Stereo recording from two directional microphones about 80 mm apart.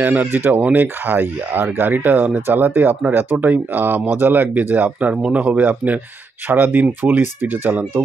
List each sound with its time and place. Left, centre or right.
0.0 s speech: right